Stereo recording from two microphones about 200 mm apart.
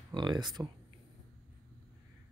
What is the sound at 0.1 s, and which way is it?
Speech, 20° right (ahead or behind).